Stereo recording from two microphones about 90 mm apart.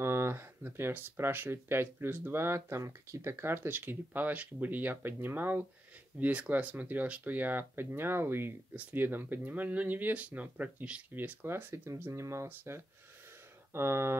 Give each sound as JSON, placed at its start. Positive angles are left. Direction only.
{"t": 0.0, "sound": "speech", "side_deg": -30}